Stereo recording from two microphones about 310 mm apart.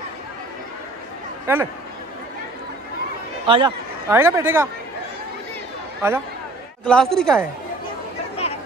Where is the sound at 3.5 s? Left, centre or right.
Centre.